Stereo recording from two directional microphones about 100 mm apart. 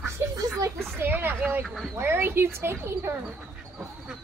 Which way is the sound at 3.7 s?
5° right (ahead or behind).